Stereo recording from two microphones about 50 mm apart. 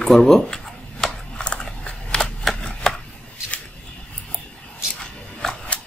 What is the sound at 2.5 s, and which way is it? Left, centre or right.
Chopping, centre.